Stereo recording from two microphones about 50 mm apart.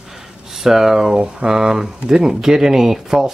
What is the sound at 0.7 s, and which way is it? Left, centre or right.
Speech, centre.